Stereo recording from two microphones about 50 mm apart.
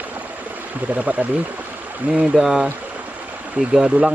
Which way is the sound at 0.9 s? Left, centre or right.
Right.